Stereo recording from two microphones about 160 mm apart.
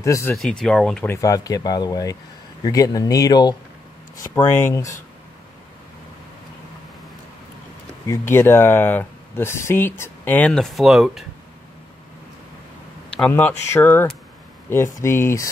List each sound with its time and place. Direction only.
0.0 s speech: 15° left (ahead or behind)
0.4 s speech: centre (ahead or behind)
1.0 s speech: 20° left (ahead or behind)
8.1 s speech: 15° left (ahead or behind); by 11.2 s centre (ahead or behind)
13.1 s speech: 10° left (ahead or behind)